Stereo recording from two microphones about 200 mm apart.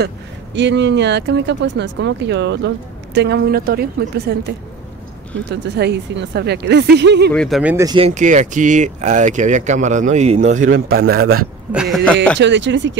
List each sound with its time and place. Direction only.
0.6 s a woman's voice: 60° right (ahead or behind)
5.5 s speech: 60° right (ahead or behind)
7.3 s speech: centre (ahead or behind)
7.7 s speech: 15° right (ahead or behind)
8.0 s speech: 40° right (ahead or behind)
11.7 s speech: centre (ahead or behind)
12.4 s speech: 65° right (ahead or behind)